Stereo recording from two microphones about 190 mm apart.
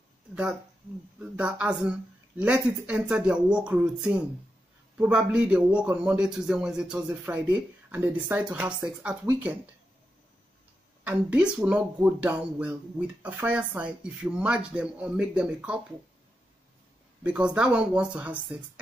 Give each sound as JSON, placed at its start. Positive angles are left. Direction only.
{"t": 0.3, "sound": "speech", "side_deg": -5}
{"t": 11.1, "sound": "speech", "side_deg": -5}
{"t": 17.2, "sound": "speech", "side_deg": -5}